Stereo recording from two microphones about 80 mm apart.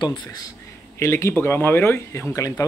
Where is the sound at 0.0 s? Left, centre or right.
Left.